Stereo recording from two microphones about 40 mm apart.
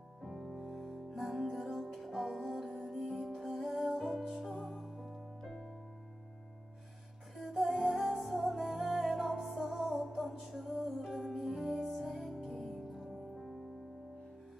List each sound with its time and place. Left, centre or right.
0.2 s music: centre
7.3 s music: centre